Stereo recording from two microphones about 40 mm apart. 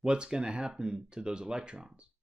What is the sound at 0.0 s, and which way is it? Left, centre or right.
Speech, centre.